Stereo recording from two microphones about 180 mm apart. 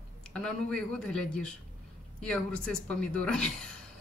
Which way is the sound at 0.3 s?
5° left (ahead or behind).